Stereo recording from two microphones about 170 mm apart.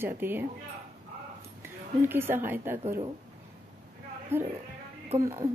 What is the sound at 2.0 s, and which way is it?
Speech, 15° right (ahead or behind).